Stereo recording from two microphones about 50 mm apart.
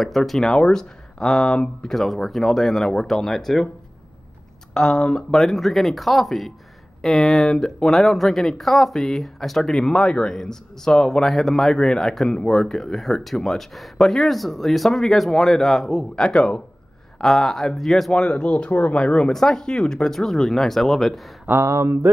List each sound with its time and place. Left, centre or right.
0.0 s speech: centre
4.7 s speech: centre
17.2 s speech: centre
18.1 s speech: left; by 21.3 s centre
21.6 s speech: right